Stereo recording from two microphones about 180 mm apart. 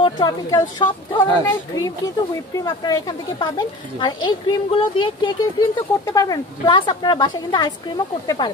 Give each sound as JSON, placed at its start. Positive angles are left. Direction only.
{"t": 0.0, "sound": "speech", "side_deg": 20}